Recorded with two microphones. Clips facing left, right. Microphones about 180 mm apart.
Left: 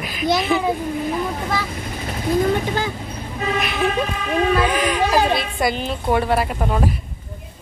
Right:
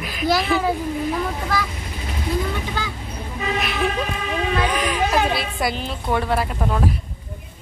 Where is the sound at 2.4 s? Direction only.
50° left (ahead or behind).